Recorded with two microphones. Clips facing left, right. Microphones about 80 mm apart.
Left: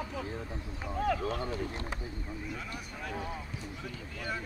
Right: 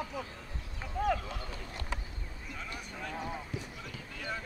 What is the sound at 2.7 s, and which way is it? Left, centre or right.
Speech, centre.